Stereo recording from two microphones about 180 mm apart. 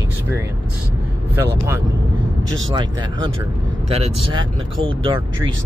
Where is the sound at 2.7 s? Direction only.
25° right (ahead or behind).